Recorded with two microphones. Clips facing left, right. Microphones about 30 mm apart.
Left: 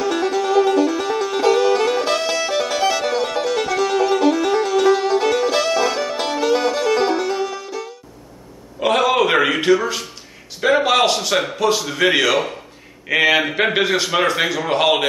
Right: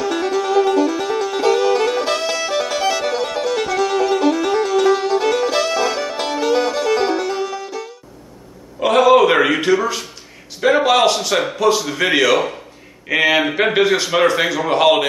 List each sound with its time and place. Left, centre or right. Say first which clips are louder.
0.0 s music: even; centre
8.7 s a sound: right 4 dB; centre
10.6 s a man's voice: right 2 dB; centre